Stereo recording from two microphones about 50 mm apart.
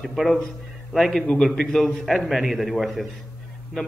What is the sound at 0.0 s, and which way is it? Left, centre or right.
A man's voice, centre.